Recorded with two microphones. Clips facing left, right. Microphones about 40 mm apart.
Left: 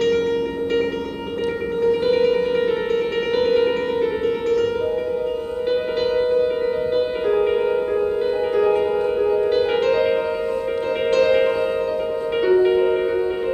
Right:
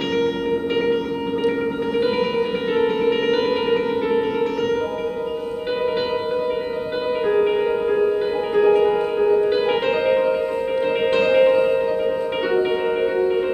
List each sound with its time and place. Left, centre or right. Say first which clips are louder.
2.0 s music: left 3 dB; centre
5.7 s music: left 1 dB; centre
9.6 s music: left 2 dB; right
11.1 s music: even; centre